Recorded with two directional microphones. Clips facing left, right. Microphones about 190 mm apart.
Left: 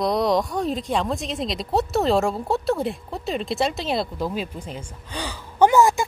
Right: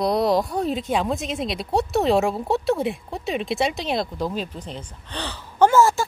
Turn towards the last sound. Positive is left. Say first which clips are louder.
# even
turn(degrees=15)  # may be behind; listen again after turning